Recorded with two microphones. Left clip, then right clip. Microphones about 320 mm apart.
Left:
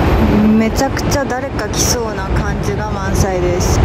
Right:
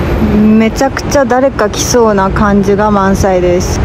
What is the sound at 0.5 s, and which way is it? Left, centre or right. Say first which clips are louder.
Speech: right 5 dB; centre.